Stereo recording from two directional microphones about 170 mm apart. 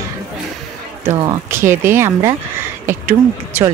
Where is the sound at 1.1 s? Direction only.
20° right (ahead or behind).